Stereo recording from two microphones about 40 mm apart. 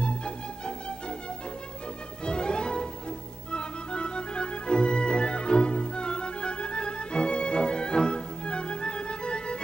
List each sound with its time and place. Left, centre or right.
0.0 s music: left
2.2 s music: left